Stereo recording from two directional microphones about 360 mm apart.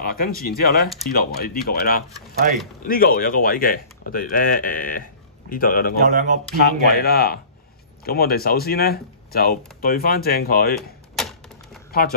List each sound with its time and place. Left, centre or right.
0.0 s speech: left
2.4 s speech: right
2.8 s speech: left
5.9 s speech: right
6.6 s speech: left
10.8 s typewriter: centre